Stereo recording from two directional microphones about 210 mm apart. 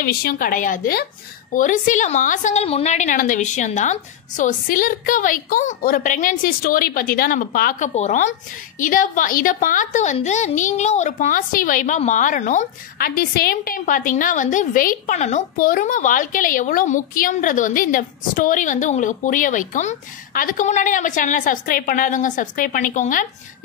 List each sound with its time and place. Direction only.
0.0 s a woman's voice: 45° left (ahead or behind)